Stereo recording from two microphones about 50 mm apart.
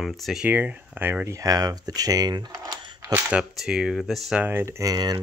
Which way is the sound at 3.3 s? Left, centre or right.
Centre.